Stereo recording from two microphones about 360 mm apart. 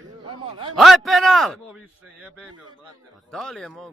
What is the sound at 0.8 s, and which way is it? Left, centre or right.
Speech, centre.